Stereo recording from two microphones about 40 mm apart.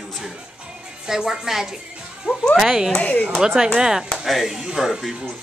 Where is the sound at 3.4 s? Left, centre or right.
Centre.